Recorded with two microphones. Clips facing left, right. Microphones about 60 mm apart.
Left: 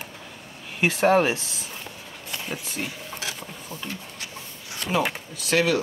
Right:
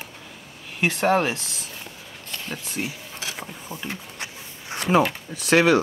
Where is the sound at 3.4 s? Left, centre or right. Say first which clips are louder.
Right 2 dB; centre.